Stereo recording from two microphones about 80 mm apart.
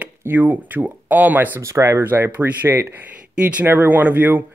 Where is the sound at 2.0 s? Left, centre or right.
Right.